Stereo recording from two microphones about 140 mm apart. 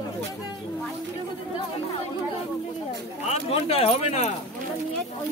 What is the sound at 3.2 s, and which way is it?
Speech, 50° left (ahead or behind).